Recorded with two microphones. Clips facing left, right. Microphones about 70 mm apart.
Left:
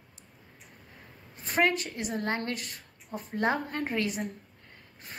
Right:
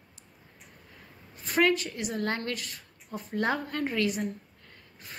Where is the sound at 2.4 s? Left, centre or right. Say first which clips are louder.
Even; left.